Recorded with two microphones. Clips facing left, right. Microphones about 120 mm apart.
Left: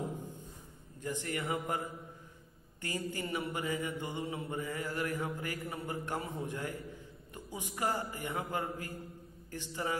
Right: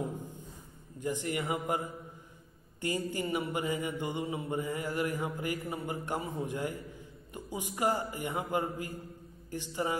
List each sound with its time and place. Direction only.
1.0 s mantra: 15° right (ahead or behind)
2.8 s mantra: 20° right (ahead or behind)